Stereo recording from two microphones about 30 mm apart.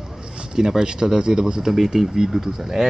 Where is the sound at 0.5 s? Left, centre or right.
Right.